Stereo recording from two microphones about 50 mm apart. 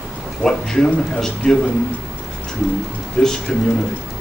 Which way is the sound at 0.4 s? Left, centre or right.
Centre.